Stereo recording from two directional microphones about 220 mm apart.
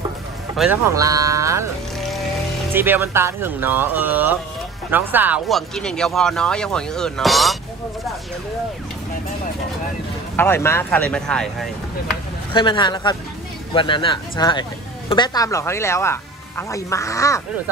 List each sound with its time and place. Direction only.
0.6 s speech: centre (ahead or behind)
0.9 s speech: 15° right (ahead or behind)
2.7 s speech: 10° right (ahead or behind)
10.3 s speech: 10° left (ahead or behind)
12.5 s speech: 20° left (ahead or behind)